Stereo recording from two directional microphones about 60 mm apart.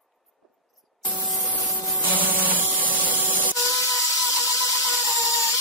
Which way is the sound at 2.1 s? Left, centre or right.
Right.